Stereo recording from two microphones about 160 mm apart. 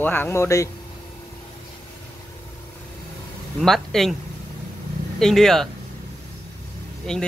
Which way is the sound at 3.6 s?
Centre (ahead or behind).